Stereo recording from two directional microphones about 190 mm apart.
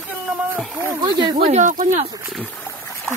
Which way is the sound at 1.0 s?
25° right (ahead or behind).